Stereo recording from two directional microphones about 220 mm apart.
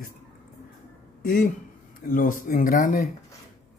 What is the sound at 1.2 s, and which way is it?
Speech, 40° left (ahead or behind).